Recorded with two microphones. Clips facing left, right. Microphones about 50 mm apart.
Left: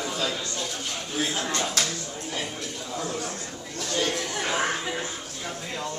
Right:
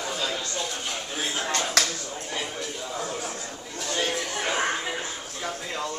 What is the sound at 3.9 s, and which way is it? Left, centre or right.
Chatter, centre.